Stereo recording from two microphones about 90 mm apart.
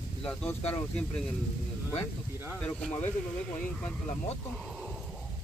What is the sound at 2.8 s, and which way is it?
Speech, 25° left (ahead or behind).